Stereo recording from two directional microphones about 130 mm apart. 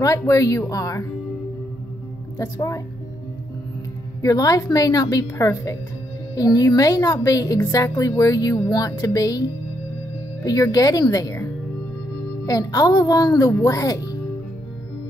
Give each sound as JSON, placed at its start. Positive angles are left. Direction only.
{"t": 0.2, "sound": "a woman's voice", "side_deg": 25}
{"t": 2.3, "sound": "a woman's voice", "side_deg": 25}
{"t": 4.2, "sound": "a woman's voice", "side_deg": 30}
{"t": 10.4, "sound": "a woman's voice", "side_deg": 25}
{"t": 12.4, "sound": "a woman's voice", "side_deg": 30}